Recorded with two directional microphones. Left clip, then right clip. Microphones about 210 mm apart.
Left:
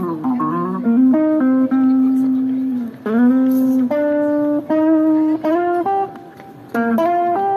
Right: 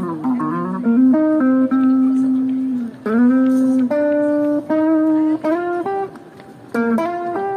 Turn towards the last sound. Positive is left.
turn(degrees=-15)  # may be behind; listen again after turning